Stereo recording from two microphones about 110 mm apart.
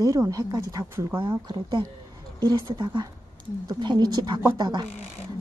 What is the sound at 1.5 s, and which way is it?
Speech, 40° right (ahead or behind).